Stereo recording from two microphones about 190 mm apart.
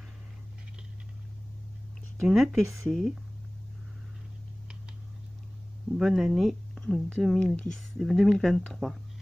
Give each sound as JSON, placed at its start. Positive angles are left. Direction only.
{"t": 2.2, "sound": "speech", "side_deg": 0}
{"t": 5.9, "sound": "speech", "side_deg": 0}